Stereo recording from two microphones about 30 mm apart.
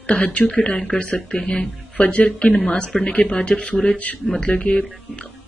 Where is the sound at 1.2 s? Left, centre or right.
Left.